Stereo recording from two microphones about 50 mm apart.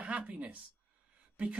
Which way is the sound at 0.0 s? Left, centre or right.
Right.